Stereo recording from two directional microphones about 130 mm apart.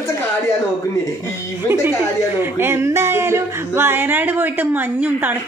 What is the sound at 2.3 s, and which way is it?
Speech, 20° right (ahead or behind).